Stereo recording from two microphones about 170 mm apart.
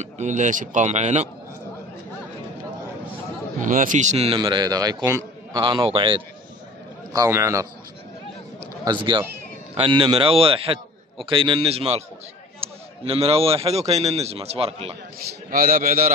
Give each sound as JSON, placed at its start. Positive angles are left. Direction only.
{"t": 0.0, "sound": "a man's voice", "side_deg": -45}
{"t": 3.6, "sound": "a man's voice", "side_deg": -50}
{"t": 7.1, "sound": "a man's voice", "side_deg": -20}
{"t": 8.8, "sound": "a man's voice", "side_deg": -25}
{"t": 15.5, "sound": "a man's voice", "side_deg": -60}